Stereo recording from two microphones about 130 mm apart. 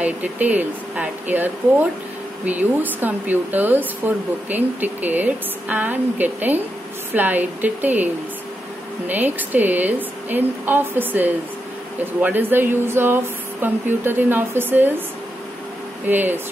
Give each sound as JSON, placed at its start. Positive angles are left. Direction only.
{"t": 0.0, "sound": "speech", "side_deg": -10}
{"t": 16.1, "sound": "speech", "side_deg": -15}